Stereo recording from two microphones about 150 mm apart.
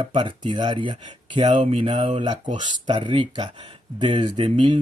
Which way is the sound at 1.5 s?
45° right (ahead or behind).